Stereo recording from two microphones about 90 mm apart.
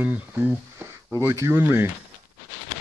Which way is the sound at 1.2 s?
30° right (ahead or behind).